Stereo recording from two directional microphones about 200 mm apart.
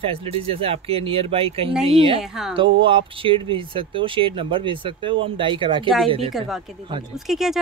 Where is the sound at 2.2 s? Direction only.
Centre (ahead or behind).